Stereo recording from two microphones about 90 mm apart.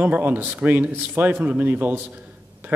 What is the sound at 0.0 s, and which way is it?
A man's voice, 20° right (ahead or behind).